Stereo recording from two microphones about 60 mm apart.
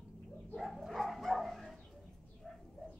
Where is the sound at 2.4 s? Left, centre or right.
Centre.